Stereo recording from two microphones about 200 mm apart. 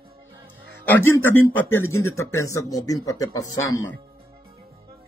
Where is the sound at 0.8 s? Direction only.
10° left (ahead or behind).